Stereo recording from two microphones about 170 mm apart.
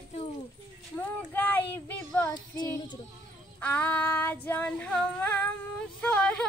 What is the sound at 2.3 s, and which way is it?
Child singing, 25° left (ahead or behind).